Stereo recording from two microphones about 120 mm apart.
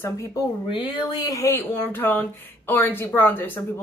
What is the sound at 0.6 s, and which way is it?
A woman's voice, 35° left (ahead or behind).